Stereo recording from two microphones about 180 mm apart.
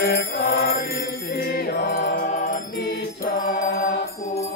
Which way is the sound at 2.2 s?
45° left (ahead or behind).